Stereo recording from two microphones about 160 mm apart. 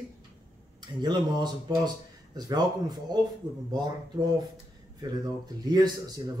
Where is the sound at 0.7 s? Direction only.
25° right (ahead or behind).